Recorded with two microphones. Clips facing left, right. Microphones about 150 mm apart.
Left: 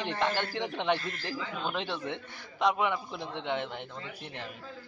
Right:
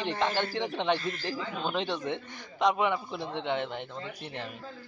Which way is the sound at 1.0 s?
20° right (ahead or behind).